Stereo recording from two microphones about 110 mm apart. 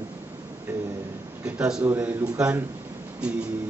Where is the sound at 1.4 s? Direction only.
10° right (ahead or behind).